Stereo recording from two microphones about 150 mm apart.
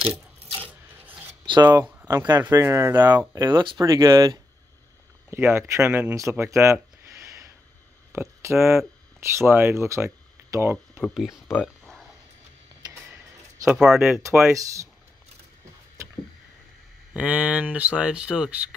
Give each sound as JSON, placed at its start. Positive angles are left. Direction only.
{"t": 0.1, "sound": "filing", "side_deg": -10}
{"t": 1.4, "sound": "speech", "side_deg": -30}
{"t": 1.9, "sound": "a sound", "side_deg": -15}
{"t": 2.4, "sound": "speech", "side_deg": -15}
{"t": 11.0, "sound": "speech", "side_deg": 5}
{"t": 11.2, "sound": "speech", "side_deg": 15}
{"t": 11.6, "sound": "a sound", "side_deg": 0}
{"t": 13.7, "sound": "speech", "side_deg": -5}
{"t": 14.5, "sound": "speech", "side_deg": -20}
{"t": 17.1, "sound": "speech", "side_deg": -10}